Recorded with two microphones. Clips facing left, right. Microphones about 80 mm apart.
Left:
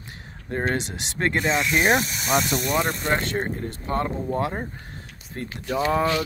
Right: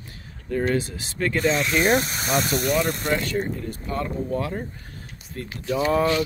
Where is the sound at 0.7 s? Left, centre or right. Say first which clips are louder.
Right 1 dB; left.